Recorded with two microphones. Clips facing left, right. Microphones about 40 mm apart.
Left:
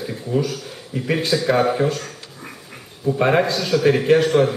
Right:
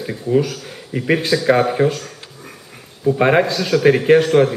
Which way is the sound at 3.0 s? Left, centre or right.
Centre.